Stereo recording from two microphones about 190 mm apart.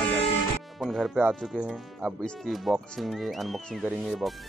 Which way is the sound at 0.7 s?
Centre (ahead or behind).